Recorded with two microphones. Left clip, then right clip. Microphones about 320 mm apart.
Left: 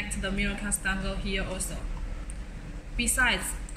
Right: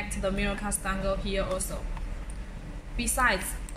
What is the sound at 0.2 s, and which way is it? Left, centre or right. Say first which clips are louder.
A woman's voice: right 3 dB; centre.